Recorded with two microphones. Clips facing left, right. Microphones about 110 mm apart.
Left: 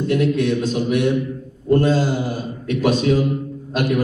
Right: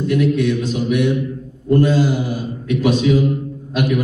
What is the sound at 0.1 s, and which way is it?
A man's voice, 40° left (ahead or behind).